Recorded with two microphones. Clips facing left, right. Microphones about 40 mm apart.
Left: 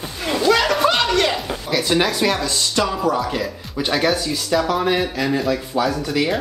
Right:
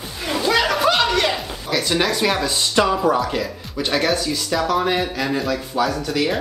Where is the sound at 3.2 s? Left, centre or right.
Centre.